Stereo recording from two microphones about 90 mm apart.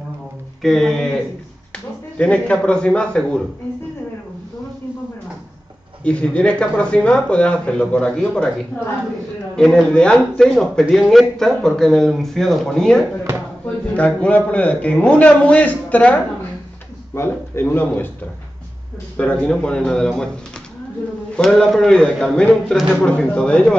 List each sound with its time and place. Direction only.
0.6 s speech: 5° left (ahead or behind)
6.0 s speech: 15° left (ahead or behind)
9.6 s speech: 5° left (ahead or behind)
17.1 s speech: 30° left (ahead or behind)
19.1 s speech: 15° left (ahead or behind)
21.4 s speech: 5° left (ahead or behind)